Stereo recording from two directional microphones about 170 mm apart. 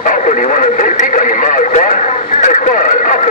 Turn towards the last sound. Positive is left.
turn(degrees=45)  # may be behind; listen again after turning